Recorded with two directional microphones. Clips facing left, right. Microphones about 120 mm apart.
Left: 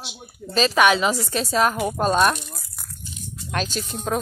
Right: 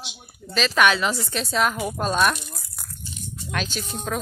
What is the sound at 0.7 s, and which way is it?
Speech, 15° left (ahead or behind).